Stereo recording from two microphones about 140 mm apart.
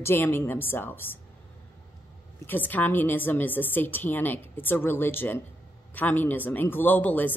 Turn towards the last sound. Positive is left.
turn(degrees=10)  # may be behind; listen again after turning